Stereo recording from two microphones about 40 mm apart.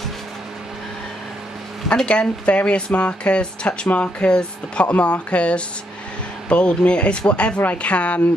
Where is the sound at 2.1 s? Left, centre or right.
Left.